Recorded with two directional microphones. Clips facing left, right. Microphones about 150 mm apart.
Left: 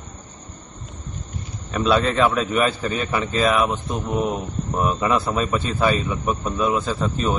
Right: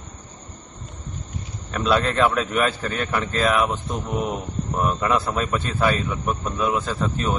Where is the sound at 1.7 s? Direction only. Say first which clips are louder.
Left 2 dB; centre (ahead or behind).